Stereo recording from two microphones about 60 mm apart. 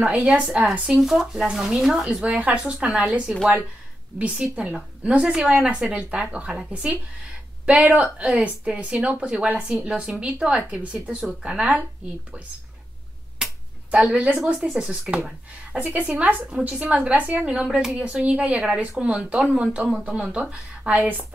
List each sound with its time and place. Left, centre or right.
0.0 s a woman's voice: right
0.5 s a woman's voice: centre
2.2 s a woman's voice: right
4.4 s a woman's voice: centre
13.8 s a woman's voice: centre
21.0 s a woman's voice: right